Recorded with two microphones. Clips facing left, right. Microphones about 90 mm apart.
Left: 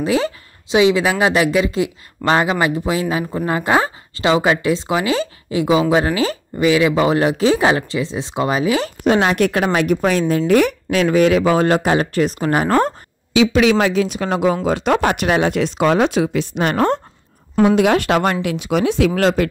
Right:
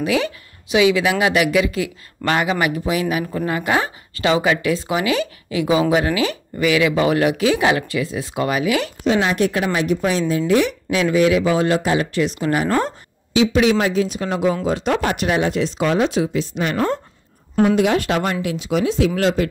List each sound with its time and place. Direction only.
0.0 s speech: 30° left (ahead or behind)
9.0 s speech: 60° left (ahead or behind); by 12.7 s 40° left (ahead or behind)
13.3 s speech: 90° left; by 19.5 s 60° left (ahead or behind)